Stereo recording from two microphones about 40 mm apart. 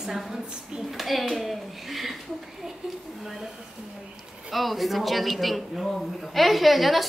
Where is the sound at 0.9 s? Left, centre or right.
Centre.